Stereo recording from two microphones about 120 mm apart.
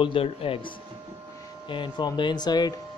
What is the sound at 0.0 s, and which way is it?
Speech, 50° left (ahead or behind).